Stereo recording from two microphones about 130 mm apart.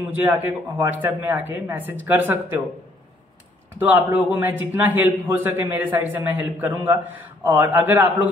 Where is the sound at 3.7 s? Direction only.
15° right (ahead or behind).